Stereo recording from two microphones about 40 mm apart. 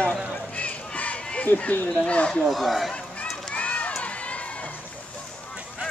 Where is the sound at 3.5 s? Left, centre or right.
Left.